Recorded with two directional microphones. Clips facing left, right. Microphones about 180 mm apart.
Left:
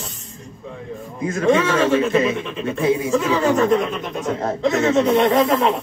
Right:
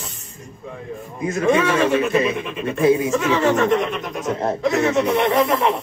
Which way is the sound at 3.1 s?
Centre (ahead or behind).